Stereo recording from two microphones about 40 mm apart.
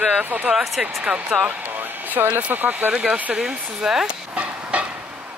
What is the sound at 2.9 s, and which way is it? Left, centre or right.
Speech, right.